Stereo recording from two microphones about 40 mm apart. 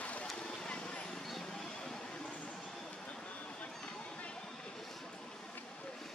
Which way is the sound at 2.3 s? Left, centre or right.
Left.